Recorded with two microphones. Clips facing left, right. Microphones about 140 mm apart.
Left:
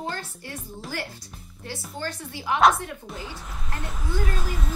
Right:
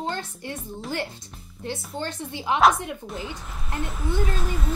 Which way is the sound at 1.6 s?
20° right (ahead or behind).